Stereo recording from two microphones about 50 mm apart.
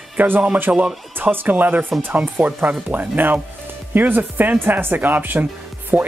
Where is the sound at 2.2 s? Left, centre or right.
Right.